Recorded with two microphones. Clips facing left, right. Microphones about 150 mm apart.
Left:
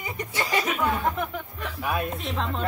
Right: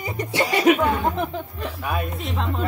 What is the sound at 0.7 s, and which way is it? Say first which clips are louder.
Speech: right 13 dB; 70° right (ahead or behind).